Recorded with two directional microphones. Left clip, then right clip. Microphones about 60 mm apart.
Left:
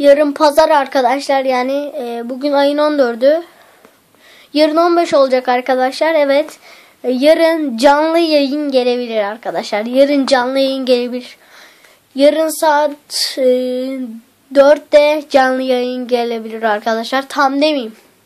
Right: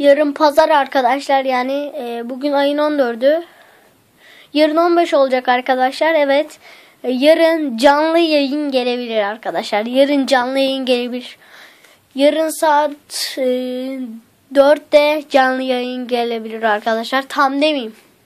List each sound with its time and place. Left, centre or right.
0.0 s a woman's voice: left
4.5 s speech: left
4.9 s a woman's voice: centre
12.2 s a woman's voice: left
14.7 s a woman's voice: centre